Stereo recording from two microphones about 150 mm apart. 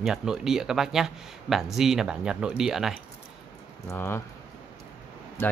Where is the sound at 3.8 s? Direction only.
15° left (ahead or behind).